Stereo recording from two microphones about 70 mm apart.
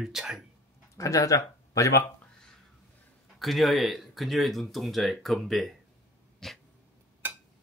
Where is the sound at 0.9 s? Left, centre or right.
Left.